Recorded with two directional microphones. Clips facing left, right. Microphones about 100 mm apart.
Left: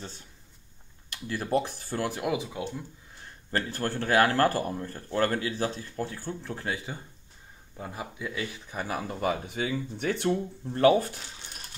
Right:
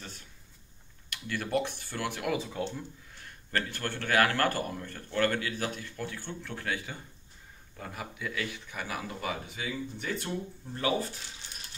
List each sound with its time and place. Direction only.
1.1 s speech: 30° left (ahead or behind)
2.2 s speech: 15° left (ahead or behind)
3.5 s speech: 35° left (ahead or behind); by 10.2 s 65° left (ahead or behind)
10.7 s speech: 50° left (ahead or behind)